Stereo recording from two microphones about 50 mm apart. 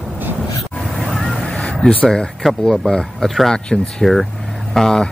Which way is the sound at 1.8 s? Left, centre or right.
Left.